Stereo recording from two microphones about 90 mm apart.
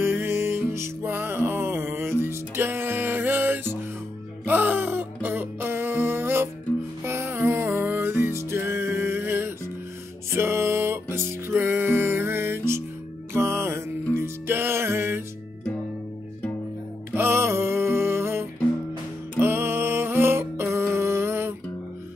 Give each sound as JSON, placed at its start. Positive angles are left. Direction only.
{"t": 0.0, "sound": "music", "side_deg": -25}
{"t": 17.1, "sound": "music", "side_deg": -30}